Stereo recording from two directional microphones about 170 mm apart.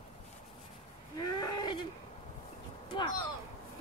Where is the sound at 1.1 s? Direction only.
25° left (ahead or behind).